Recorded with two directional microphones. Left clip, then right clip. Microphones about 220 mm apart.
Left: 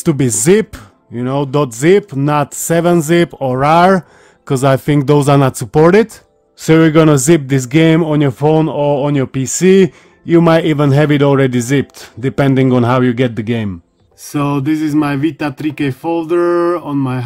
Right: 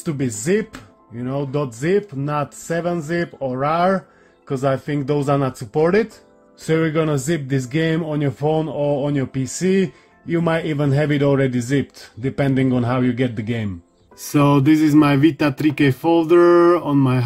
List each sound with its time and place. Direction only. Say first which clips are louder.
0.0 s a man's voice: left 11 dB; 40° left (ahead or behind)
14.2 s speech: right 1 dB; centre (ahead or behind)